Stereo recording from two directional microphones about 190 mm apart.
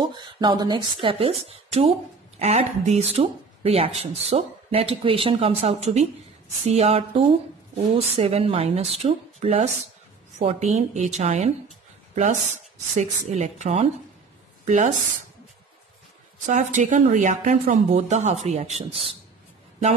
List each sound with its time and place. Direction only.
0.0 s a woman's voice: 25° right (ahead or behind)
12.9 s speech: 35° right (ahead or behind)
16.4 s speech: 40° right (ahead or behind)